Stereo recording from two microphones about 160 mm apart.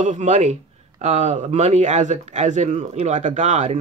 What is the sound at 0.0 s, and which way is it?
Speech, 50° right (ahead or behind).